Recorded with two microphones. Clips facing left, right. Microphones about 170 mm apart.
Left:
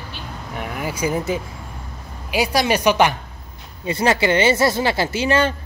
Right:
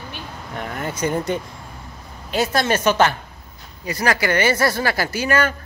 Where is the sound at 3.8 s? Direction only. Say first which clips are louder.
Left 3 dB; 25° left (ahead or behind).